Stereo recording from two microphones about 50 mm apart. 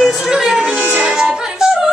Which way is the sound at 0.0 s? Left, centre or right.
Centre.